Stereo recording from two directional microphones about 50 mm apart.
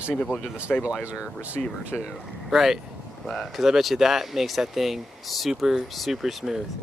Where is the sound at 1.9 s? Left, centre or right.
Left.